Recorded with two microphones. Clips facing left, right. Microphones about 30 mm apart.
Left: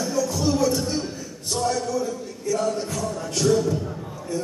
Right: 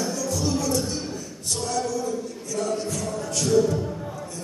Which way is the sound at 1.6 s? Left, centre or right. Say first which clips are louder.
Left 4 dB; centre.